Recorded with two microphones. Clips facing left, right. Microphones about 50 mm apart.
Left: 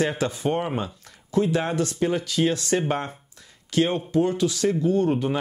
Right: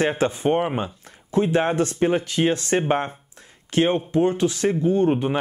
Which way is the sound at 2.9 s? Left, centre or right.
Right.